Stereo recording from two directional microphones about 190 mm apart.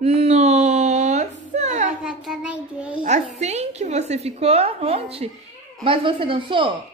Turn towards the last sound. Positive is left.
turn(degrees=-25)  # may be behind; listen again after turning